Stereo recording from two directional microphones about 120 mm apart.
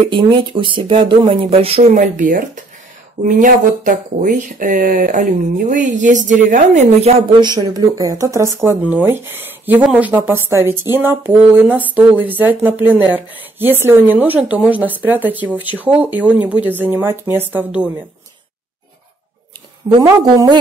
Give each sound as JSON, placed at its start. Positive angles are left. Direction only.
{"t": 0.1, "sound": "speech", "side_deg": -45}
{"t": 2.0, "sound": "speech", "side_deg": -90}
{"t": 7.3, "sound": "speech", "side_deg": -35}
{"t": 19.9, "sound": "speech", "side_deg": -30}